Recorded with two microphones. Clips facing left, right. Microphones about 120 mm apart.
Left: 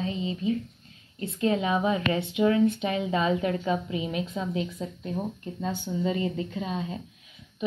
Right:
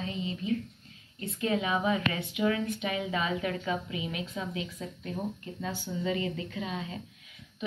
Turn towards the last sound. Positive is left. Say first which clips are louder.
# left 4 dB
turn(degrees=30)  # may be behind; listen again after turning